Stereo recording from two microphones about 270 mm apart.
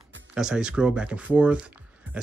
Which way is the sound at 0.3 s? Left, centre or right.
Centre.